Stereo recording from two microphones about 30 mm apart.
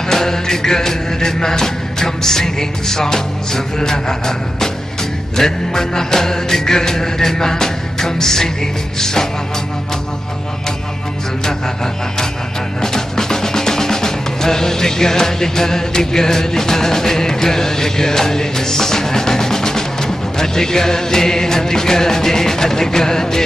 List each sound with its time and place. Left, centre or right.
0.1 s music: centre
12.8 s music: centre